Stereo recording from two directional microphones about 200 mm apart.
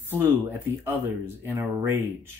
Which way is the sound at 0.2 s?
10° right (ahead or behind).